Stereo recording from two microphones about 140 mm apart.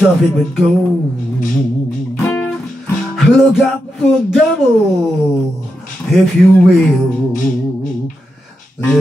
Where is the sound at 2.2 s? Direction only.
15° left (ahead or behind).